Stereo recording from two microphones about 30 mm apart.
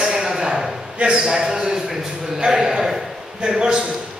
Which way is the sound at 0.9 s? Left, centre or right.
Right.